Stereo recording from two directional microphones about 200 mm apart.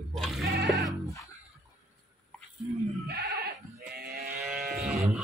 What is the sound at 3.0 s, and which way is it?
Goat, 55° right (ahead or behind).